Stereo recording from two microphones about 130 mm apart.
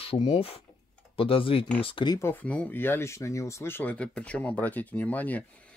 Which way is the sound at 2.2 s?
15° left (ahead or behind).